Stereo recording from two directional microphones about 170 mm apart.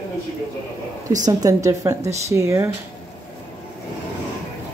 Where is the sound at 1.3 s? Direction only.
20° right (ahead or behind).